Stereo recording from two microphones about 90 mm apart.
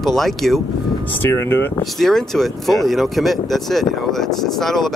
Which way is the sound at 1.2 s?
25° left (ahead or behind).